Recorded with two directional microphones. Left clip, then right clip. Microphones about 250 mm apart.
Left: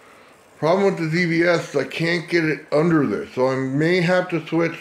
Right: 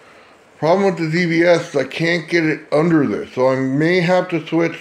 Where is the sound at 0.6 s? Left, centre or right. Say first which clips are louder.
Right 3 dB; centre.